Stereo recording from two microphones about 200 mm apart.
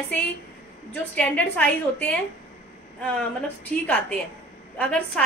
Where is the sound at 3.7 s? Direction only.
5° left (ahead or behind).